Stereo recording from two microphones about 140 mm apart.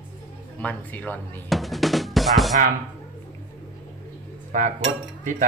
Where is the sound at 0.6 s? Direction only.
10° left (ahead or behind).